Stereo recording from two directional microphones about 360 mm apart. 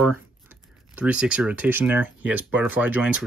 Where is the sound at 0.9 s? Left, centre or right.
Centre.